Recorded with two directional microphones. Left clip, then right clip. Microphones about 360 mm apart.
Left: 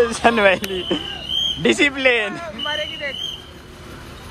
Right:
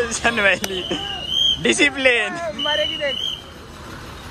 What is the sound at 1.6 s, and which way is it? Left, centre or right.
Speech, centre.